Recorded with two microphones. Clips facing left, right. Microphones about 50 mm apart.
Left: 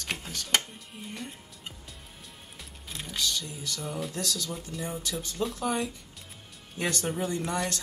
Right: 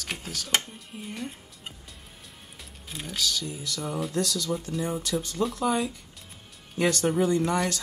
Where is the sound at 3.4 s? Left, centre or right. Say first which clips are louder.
Right 3 dB; centre.